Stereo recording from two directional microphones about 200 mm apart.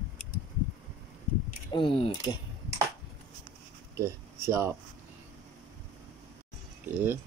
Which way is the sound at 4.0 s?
15° right (ahead or behind).